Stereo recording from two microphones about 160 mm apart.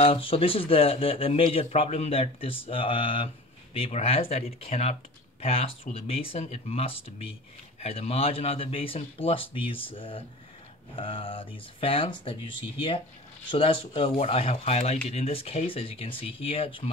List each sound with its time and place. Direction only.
0.0 s speech: 35° left (ahead or behind)